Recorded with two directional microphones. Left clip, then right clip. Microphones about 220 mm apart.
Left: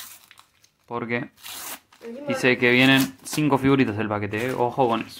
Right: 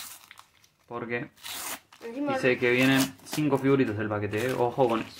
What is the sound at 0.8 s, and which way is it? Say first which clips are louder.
Speech: left 5 dB; 25° left (ahead or behind).